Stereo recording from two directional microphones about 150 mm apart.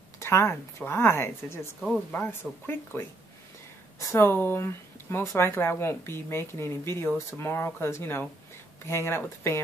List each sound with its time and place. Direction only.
0.2 s speech: 15° left (ahead or behind)
4.1 s speech: 15° left (ahead or behind)